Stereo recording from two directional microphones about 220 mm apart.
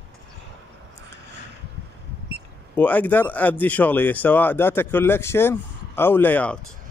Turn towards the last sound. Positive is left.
turn(degrees=5)  # may be behind; listen again after turning